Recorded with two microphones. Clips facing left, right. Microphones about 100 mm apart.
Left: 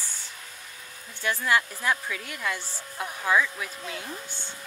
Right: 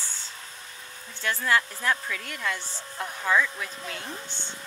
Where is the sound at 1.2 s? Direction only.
15° left (ahead or behind).